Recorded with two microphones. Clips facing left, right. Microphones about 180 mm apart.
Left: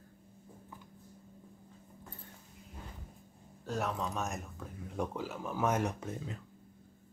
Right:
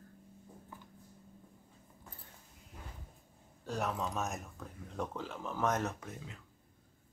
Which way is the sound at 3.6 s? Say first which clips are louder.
Left 1 dB; centre (ahead or behind).